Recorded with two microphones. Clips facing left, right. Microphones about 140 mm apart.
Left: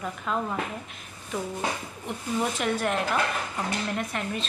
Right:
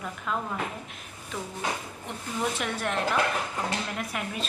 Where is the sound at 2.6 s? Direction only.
Centre (ahead or behind).